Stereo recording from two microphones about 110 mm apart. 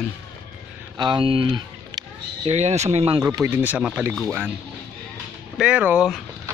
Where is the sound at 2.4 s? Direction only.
80° right.